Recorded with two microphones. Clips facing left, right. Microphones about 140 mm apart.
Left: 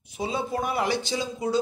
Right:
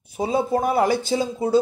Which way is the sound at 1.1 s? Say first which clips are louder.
Right 7 dB; 35° right (ahead or behind).